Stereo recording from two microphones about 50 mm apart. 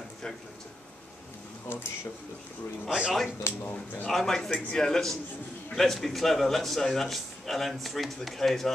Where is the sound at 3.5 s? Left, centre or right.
Left.